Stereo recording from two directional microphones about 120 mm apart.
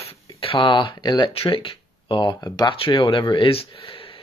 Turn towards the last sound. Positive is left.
turn(degrees=50)  # may be behind; listen again after turning